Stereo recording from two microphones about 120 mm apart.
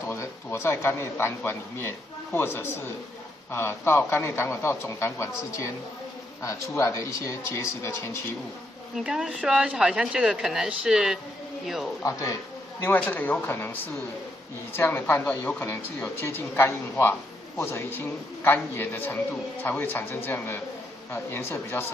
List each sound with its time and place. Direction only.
0.1 s a man's voice: 20° left (ahead or behind)
6.8 s a man's voice: 25° left (ahead or behind)
8.9 s a woman's voice: 5° right (ahead or behind)
12.0 s a man's voice: 25° left (ahead or behind)
12.8 s a man's voice: 15° left (ahead or behind)